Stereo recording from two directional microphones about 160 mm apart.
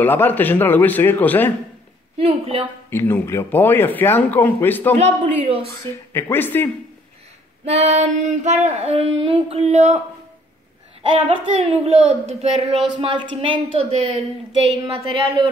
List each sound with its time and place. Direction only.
0.0 s speech: 10° left (ahead or behind)
2.1 s speech: 35° right (ahead or behind)
2.9 s speech: 15° left (ahead or behind)
4.9 s female singing: 45° right (ahead or behind)
5.8 s speech: 15° left (ahead or behind)
7.6 s female singing: 45° right (ahead or behind)
11.0 s speech: 35° right (ahead or behind)
13.0 s speech: 30° right (ahead or behind)